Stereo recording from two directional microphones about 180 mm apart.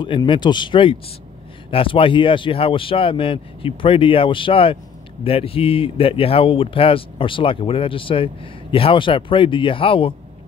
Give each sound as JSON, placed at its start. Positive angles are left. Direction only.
{"t": 0.0, "sound": "speech", "side_deg": 25}